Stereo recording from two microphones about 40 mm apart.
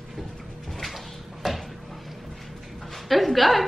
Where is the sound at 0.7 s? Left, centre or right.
Centre.